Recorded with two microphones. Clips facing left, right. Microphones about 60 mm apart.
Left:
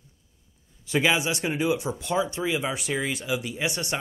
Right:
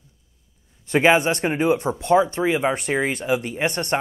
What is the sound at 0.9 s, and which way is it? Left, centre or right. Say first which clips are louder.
A man's voice: right 7 dB; right.